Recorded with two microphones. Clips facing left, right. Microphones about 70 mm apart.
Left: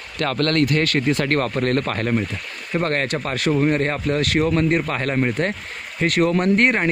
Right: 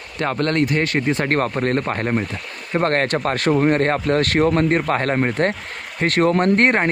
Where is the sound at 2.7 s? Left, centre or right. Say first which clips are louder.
Right 3 dB; right.